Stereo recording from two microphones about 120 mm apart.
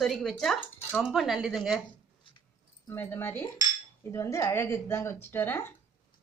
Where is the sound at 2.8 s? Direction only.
20° left (ahead or behind).